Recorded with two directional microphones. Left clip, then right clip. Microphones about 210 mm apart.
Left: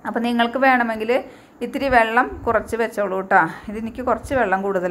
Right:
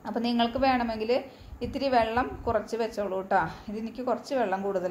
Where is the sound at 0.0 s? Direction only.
20° left (ahead or behind).